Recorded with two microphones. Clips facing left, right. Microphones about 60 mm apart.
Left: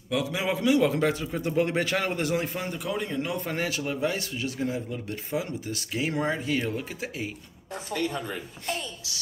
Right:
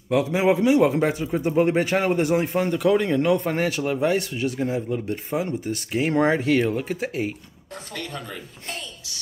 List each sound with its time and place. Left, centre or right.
0.1 s speech: right
2.7 s speech: right
3.3 s speech: right
6.2 s speech: right
6.7 s speech: right
7.9 s speech: centre